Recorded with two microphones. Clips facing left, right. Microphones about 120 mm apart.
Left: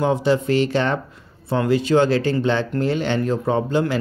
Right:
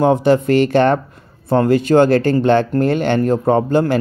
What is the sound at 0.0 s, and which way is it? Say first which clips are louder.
Speech: right 6 dB; 50° right (ahead or behind).